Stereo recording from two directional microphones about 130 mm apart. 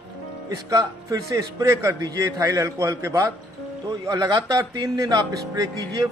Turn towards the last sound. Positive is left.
turn(degrees=-25)  # may be behind; listen again after turning